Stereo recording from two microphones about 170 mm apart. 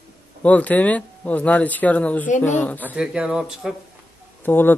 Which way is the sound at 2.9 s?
5° right (ahead or behind).